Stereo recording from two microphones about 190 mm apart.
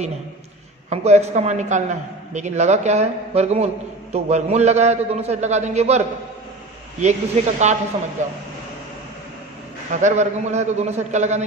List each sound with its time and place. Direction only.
0.8 s a man's voice: 35° right (ahead or behind)
10.0 s a man's voice: 35° right (ahead or behind)